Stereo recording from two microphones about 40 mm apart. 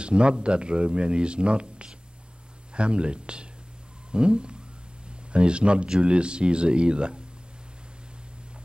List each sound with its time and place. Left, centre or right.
0.0 s speech: right